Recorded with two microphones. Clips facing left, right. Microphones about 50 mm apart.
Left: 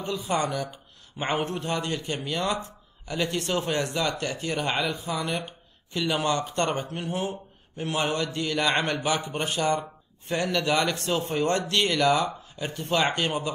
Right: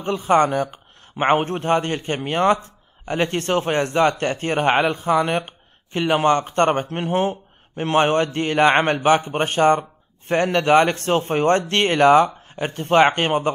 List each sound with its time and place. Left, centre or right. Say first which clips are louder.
0.0 s speech: right 10 dB; right